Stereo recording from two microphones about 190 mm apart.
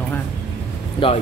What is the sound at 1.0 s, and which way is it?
Speech, 25° left (ahead or behind).